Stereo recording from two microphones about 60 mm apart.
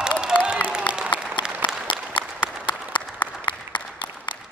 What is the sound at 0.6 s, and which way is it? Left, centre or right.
Applause, centre.